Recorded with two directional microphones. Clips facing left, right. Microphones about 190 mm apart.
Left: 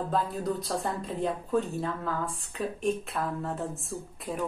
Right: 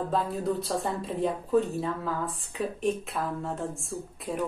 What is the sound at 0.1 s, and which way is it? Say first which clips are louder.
Speech: right 1 dB; centre (ahead or behind).